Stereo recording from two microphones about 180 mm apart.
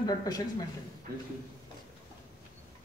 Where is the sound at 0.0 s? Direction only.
20° left (ahead or behind).